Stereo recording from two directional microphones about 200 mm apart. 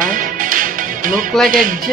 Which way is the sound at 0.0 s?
40° right (ahead or behind).